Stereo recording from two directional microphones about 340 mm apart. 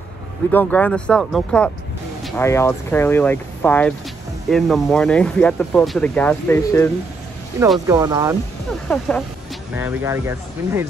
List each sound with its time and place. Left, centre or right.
0.5 s speech: centre
7.6 s speech: centre
8.8 s speech: centre